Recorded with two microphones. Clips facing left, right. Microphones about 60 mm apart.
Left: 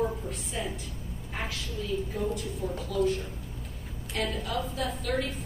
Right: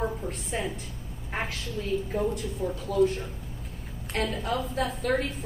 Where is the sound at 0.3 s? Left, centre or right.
Right.